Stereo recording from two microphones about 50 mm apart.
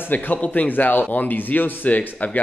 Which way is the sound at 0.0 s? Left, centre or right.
Left.